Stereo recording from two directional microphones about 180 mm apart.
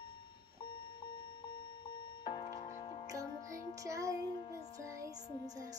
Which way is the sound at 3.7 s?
15° right (ahead or behind).